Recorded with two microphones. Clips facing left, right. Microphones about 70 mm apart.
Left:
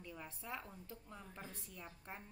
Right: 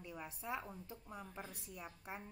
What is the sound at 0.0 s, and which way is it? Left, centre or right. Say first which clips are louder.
A woman's voice: right 3 dB; centre.